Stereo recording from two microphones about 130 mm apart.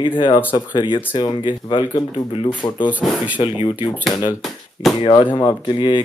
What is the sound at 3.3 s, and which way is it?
Speech, 40° left (ahead or behind).